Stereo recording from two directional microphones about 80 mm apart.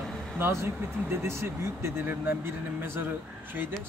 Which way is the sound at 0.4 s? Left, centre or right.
Right.